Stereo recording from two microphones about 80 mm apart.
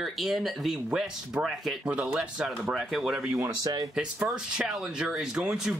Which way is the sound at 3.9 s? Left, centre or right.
Centre.